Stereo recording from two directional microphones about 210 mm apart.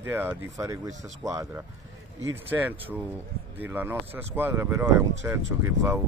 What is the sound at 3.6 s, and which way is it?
Speech, 10° right (ahead or behind).